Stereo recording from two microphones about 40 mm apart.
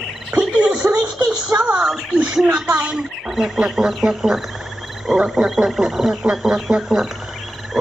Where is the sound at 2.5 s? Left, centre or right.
Centre.